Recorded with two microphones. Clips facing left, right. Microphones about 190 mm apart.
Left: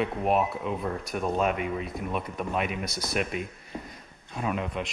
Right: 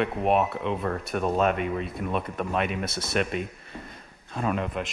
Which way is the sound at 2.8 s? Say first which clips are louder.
Right 2 dB; 25° right (ahead or behind).